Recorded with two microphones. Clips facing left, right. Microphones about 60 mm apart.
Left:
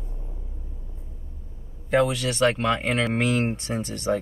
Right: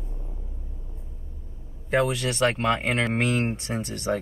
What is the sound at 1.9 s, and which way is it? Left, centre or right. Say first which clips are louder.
Speech: left 2 dB; centre.